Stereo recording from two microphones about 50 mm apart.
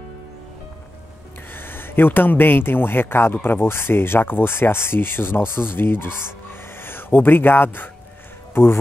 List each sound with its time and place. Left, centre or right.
1.5 s speech: left